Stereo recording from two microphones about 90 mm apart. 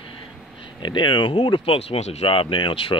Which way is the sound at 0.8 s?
55° left (ahead or behind).